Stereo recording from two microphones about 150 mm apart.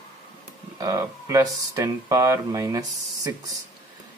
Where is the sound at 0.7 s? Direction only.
25° right (ahead or behind).